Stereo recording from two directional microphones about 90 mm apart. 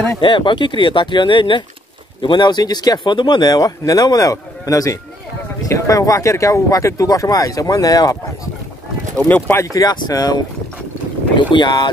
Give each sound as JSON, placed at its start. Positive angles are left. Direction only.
{"t": 0.2, "sound": "speech", "side_deg": 65}
{"t": 9.3, "sound": "speech", "side_deg": 20}
{"t": 9.7, "sound": "speech", "side_deg": 45}
{"t": 11.5, "sound": "speech", "side_deg": 55}